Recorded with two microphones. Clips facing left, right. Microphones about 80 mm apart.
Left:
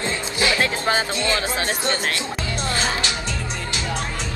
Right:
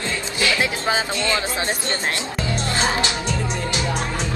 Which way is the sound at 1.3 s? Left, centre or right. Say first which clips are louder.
Even; right.